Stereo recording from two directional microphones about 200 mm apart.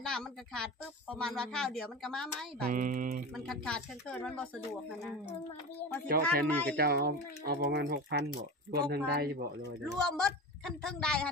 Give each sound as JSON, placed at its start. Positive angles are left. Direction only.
{"t": 0.0, "sound": "a sound", "side_deg": 5}
{"t": 1.1, "sound": "speech", "side_deg": 5}
{"t": 2.6, "sound": "speech", "side_deg": -45}
{"t": 3.3, "sound": "speech", "side_deg": 0}
{"t": 6.2, "sound": "speech", "side_deg": 5}
{"t": 6.7, "sound": "speech", "side_deg": -55}
{"t": 9.9, "sound": "speech", "side_deg": 5}